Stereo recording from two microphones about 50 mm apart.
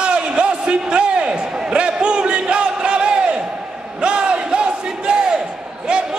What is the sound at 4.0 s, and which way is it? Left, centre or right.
Battle cry, right.